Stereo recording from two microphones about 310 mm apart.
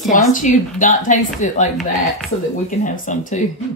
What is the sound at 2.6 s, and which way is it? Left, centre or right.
Speech, left.